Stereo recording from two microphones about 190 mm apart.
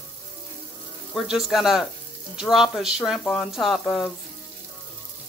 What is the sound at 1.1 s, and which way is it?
Speech, centre (ahead or behind).